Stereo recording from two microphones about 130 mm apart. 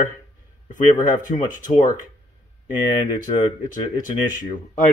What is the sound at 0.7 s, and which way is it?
Speech, 75° left (ahead or behind).